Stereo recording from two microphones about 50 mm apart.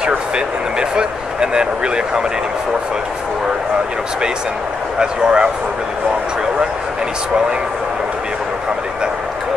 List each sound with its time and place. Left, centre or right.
0.7 s speech: centre
4.9 s speech: centre